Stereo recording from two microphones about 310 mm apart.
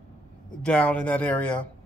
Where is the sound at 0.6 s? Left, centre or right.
Centre.